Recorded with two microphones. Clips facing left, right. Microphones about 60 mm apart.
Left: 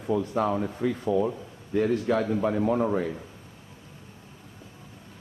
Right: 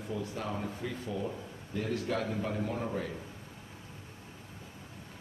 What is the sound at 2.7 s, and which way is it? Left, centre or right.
Speech, left.